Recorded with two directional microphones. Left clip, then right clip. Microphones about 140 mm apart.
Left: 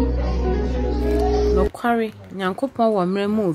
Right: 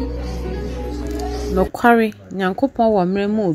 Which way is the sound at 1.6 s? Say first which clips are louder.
Right 6 dB; 45° right (ahead or behind).